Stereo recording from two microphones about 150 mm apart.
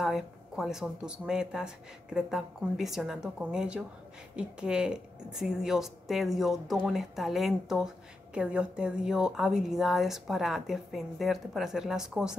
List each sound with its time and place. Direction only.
0.0 s a woman's voice: centre (ahead or behind)